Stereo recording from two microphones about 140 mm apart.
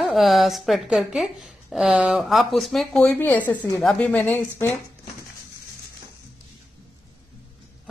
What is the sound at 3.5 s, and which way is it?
Speech, 25° left (ahead or behind).